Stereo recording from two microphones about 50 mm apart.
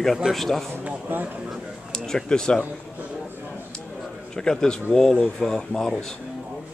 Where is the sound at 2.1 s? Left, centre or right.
Centre.